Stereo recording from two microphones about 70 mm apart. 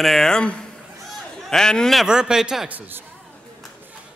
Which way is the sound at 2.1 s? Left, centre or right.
Centre.